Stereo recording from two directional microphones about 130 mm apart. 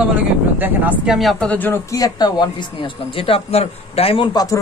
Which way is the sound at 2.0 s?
30° left (ahead or behind).